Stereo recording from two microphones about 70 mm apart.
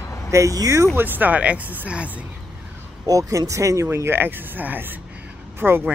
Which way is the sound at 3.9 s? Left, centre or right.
Right.